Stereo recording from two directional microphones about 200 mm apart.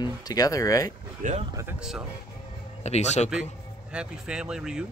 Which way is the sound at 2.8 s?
35° left (ahead or behind).